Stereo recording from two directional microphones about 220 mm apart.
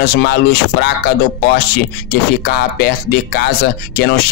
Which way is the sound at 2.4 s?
45° left (ahead or behind).